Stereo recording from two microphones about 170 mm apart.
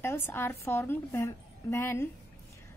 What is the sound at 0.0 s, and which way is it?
A woman's voice, 15° left (ahead or behind).